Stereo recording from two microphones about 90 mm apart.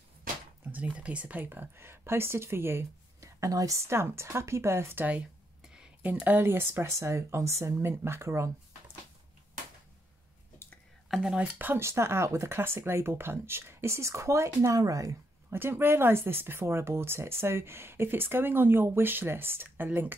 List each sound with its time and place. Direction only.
0.7 s speech: 15° right (ahead or behind)
5.6 s a sound: 10° right (ahead or behind)
6.2 s speech: 25° right (ahead or behind)
11.1 s speech: 5° right (ahead or behind)
11.5 s speech: 25° right (ahead or behind); by 15.1 s 40° right (ahead or behind)
15.5 s speech: 25° right (ahead or behind)